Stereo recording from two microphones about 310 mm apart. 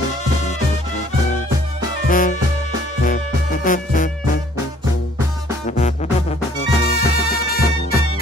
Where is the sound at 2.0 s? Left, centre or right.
Left.